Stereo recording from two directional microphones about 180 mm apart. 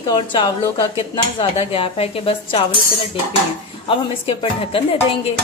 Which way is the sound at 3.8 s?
30° left (ahead or behind).